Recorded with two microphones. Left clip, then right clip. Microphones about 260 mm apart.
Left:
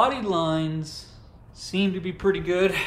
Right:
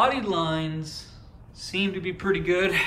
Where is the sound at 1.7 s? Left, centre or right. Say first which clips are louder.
Even; centre.